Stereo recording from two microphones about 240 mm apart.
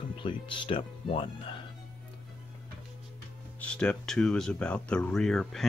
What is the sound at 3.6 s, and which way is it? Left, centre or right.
Speech, centre.